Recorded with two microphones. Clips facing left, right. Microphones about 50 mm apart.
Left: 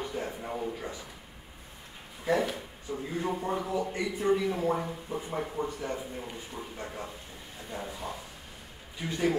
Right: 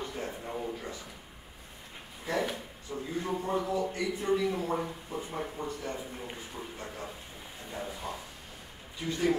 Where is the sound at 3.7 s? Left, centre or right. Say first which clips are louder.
Even; left.